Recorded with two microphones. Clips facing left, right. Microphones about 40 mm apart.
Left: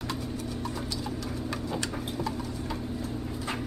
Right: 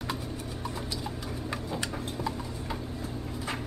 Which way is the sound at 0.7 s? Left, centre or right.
Centre.